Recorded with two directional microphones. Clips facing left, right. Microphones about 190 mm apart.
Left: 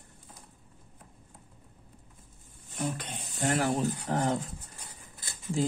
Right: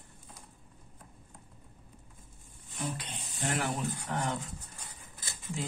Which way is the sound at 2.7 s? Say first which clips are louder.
Left 4 dB; 45° left (ahead or behind).